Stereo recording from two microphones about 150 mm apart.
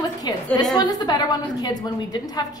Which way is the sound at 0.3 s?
30° left (ahead or behind).